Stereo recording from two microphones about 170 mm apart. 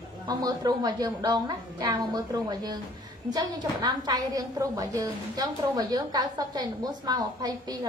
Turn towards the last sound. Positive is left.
turn(degrees=-20)  # may be behind; listen again after turning